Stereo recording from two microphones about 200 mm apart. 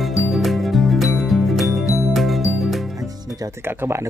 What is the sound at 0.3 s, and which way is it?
Music, centre (ahead or behind).